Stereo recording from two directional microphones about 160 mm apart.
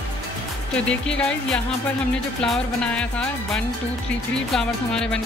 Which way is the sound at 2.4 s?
5° left (ahead or behind).